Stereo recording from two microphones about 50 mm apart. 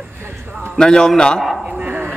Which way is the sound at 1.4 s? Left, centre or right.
Centre.